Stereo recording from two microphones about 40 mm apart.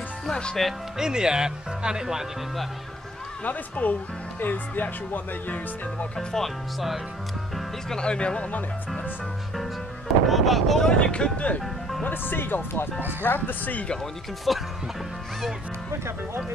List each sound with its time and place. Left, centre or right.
0.3 s speech: left
0.9 s speech: centre
3.4 s speech: left
6.1 s speech: centre
7.9 s speech: left
10.3 s speech: centre
10.8 s speech: left
12.0 s music: left
13.2 s speech: left
14.5 s speech: centre